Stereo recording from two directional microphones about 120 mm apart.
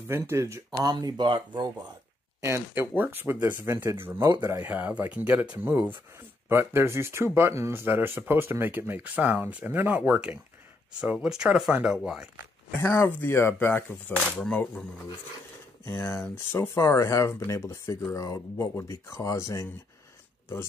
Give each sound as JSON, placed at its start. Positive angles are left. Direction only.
{"t": 0.1, "sound": "speech", "side_deg": -20}
{"t": 2.4, "sound": "speech", "side_deg": -20}
{"t": 12.8, "sound": "speech", "side_deg": 20}
{"t": 16.1, "sound": "speech", "side_deg": 20}